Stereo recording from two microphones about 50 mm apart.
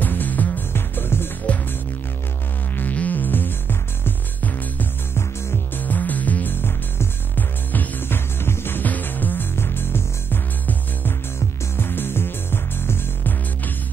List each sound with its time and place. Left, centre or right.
0.0 s music: left
0.7 s music: left
2.7 s music: left
5.8 s music: left
8.4 s music: left
8.8 s music: left
9.6 s music: left